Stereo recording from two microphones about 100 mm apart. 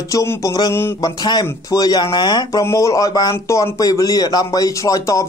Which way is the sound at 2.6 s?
35° left (ahead or behind).